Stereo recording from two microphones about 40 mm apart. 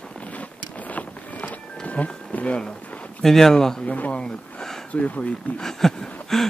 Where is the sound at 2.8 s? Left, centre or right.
Left.